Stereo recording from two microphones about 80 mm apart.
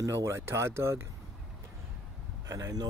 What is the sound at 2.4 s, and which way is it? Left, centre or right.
Speech, right.